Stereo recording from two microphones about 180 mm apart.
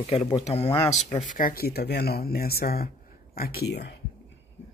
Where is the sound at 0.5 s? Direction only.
35° left (ahead or behind).